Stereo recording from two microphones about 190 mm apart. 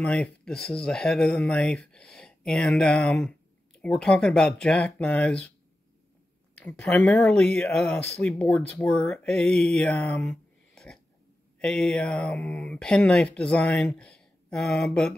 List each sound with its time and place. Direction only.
0.0 s speech: 5° left (ahead or behind)
6.6 s speech: 5° left (ahead or behind)